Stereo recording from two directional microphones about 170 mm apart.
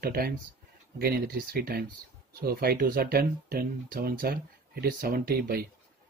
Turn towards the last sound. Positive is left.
turn(degrees=-60)  # may be behind; listen again after turning